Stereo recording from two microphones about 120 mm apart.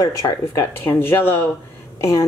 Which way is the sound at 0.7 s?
15° left (ahead or behind).